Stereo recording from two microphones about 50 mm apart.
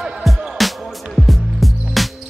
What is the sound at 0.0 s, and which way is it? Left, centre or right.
Music, centre.